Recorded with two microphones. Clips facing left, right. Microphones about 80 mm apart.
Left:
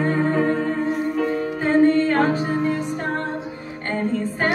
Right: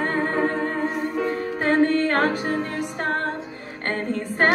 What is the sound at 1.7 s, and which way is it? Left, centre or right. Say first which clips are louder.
Music: left 3 dB; right.